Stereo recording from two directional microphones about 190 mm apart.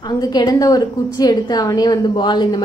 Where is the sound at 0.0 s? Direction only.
20° left (ahead or behind).